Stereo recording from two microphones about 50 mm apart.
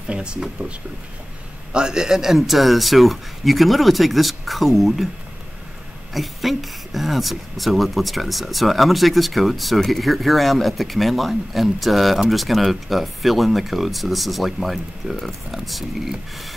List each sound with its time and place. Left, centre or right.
0.1 s speech: centre
6.1 s speech: centre